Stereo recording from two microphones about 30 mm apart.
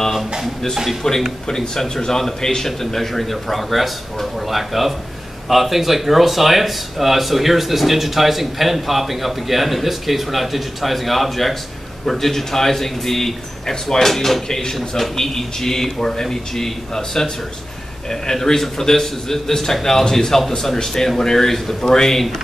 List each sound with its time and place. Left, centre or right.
1.5 s a man's voice: centre